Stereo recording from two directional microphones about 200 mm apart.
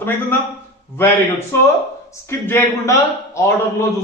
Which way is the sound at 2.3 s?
10° left (ahead or behind).